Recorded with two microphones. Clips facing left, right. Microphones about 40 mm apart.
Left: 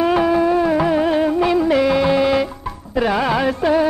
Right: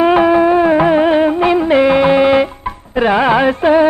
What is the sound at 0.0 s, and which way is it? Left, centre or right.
Music, right.